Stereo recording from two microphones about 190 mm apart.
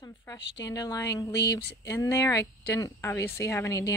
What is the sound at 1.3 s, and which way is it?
Speech, 65° left (ahead or behind).